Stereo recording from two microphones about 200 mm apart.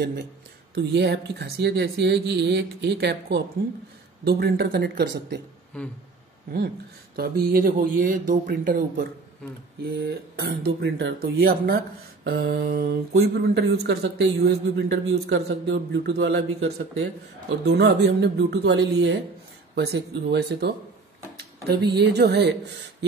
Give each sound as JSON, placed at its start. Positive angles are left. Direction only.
{"t": 0.7, "sound": "speech", "side_deg": -55}
{"t": 5.7, "sound": "a sound", "side_deg": 5}
{"t": 7.2, "sound": "speech", "side_deg": -45}